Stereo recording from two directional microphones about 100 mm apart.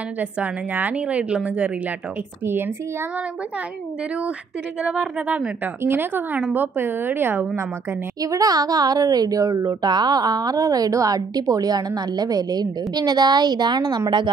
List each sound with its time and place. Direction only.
0.2 s a woman's voice: 15° right (ahead or behind)
4.8 s a woman's voice: 10° right (ahead or behind)
5.8 s a woman's voice: 20° right (ahead or behind)
8.2 s a woman's voice: 35° right (ahead or behind)